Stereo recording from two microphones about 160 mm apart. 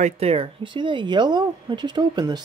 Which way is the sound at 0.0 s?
40° right (ahead or behind).